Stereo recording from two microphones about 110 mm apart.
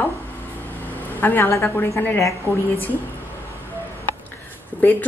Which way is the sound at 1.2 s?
20° left (ahead or behind).